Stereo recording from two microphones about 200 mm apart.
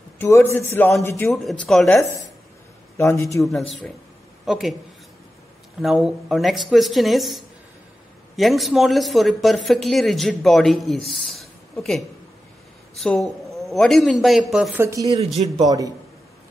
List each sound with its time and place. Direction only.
0.2 s a man's voice: 10° left (ahead or behind)
1.3 s speech: centre (ahead or behind)
3.0 s a man's voice: 15° left (ahead or behind)
3.4 s speech: centre (ahead or behind)
5.8 s speech: centre (ahead or behind)
11.1 s a sound: centre (ahead or behind)
13.0 s a man's voice: centre (ahead or behind); by 15.9 s 20° right (ahead or behind)